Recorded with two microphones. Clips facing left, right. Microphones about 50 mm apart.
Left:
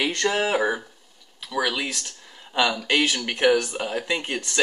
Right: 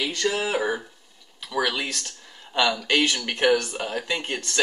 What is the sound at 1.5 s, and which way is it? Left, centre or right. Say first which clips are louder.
Speech: even; centre.